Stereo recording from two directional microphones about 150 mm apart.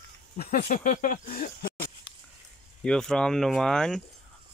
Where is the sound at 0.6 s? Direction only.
55° left (ahead or behind).